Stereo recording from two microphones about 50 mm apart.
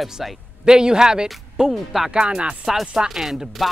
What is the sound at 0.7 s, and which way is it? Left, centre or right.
Speech, centre.